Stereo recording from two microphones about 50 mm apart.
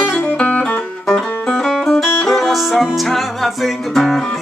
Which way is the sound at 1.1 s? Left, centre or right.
Centre.